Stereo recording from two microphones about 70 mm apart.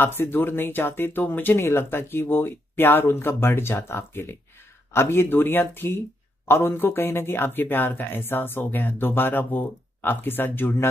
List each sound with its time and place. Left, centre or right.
0.2 s speech: left